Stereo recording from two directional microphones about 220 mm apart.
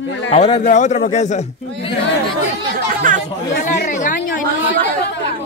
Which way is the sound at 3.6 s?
35° left (ahead or behind).